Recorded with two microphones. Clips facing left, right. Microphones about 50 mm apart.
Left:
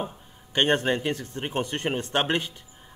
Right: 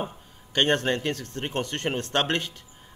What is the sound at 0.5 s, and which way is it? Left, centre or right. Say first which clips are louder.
Speech: even; centre.